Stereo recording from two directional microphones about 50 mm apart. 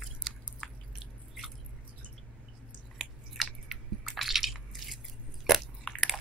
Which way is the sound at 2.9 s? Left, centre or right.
Centre.